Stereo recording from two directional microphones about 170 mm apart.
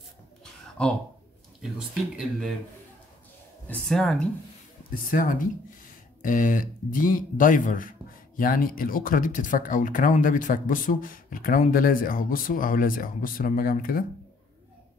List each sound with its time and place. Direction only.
0.4 s a sound: 5° left (ahead or behind)
3.6 s speech: centre (ahead or behind)
4.9 s speech: 55° left (ahead or behind)